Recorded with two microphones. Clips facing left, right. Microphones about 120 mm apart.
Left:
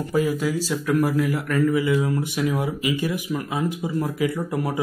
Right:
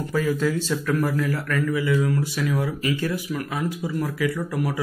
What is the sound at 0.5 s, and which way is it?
Speech, 10° left (ahead or behind).